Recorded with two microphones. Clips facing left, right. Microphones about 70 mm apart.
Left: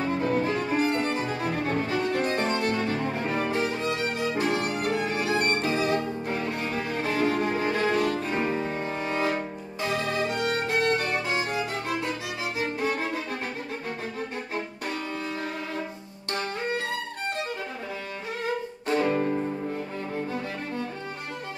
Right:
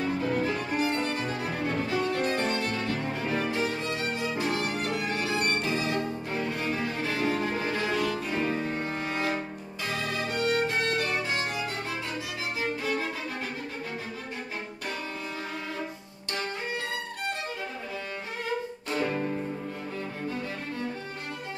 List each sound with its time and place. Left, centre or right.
0.1 s violin: left
3.4 s music: left
4.2 s violin: left
4.8 s music: left
6.8 s music: left
8.4 s music: left
18.9 s music: left